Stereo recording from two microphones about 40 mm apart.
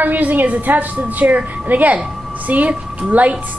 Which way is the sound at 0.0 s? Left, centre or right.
Right.